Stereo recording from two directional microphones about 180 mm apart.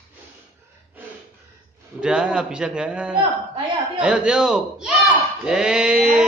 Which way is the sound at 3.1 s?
30° right (ahead or behind).